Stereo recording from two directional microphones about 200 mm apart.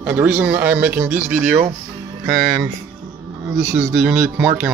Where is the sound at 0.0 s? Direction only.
5° right (ahead or behind).